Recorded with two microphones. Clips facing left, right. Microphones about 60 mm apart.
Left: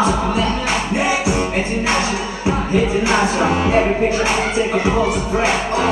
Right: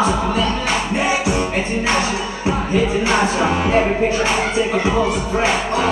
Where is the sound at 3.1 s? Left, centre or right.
Centre.